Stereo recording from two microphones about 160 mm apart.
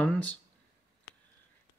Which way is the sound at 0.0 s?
5° left (ahead or behind).